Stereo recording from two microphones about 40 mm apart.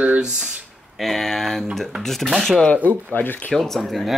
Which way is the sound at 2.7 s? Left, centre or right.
Left.